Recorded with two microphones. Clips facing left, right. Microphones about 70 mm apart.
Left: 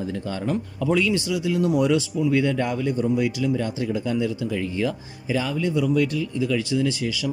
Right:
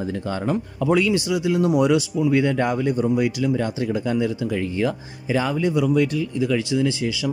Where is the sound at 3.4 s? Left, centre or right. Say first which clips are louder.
Right 2 dB; right.